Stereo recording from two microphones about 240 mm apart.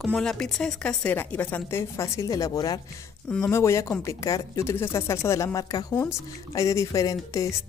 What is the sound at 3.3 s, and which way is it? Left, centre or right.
Speech, centre.